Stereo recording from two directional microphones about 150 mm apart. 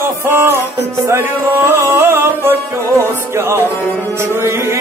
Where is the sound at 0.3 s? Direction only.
15° right (ahead or behind).